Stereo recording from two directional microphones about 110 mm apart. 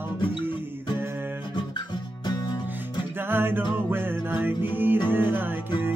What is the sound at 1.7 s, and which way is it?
Music, 40° left (ahead or behind).